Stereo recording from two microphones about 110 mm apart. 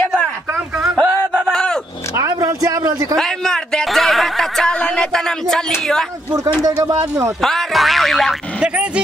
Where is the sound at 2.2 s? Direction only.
30° right (ahead or behind).